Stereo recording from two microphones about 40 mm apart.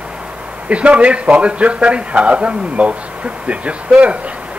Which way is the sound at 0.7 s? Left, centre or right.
Right.